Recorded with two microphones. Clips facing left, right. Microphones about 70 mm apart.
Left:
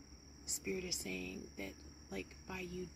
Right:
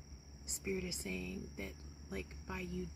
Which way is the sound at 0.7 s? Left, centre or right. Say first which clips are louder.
Right 1 dB; right.